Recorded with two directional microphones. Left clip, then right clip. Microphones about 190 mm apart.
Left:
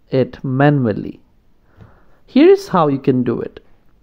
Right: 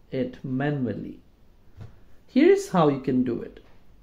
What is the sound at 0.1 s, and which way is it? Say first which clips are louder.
Speech: left 11 dB; 40° left (ahead or behind).